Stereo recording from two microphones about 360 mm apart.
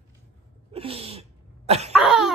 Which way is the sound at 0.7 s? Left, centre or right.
Centre.